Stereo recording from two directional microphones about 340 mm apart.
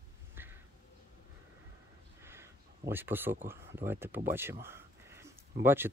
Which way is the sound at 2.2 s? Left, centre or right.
Centre.